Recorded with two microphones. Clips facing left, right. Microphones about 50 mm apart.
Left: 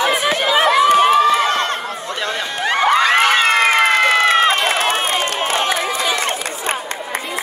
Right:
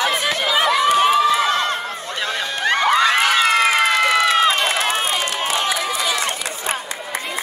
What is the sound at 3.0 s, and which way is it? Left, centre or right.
Crowd, left.